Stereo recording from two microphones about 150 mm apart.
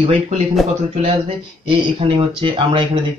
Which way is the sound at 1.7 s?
35° right (ahead or behind).